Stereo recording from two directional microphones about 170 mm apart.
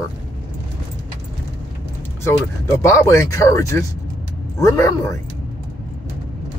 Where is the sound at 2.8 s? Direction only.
15° left (ahead or behind).